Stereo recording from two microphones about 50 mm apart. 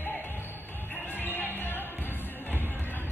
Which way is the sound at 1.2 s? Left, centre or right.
Left.